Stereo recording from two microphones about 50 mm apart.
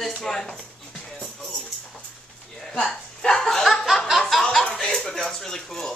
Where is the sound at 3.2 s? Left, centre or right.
Centre.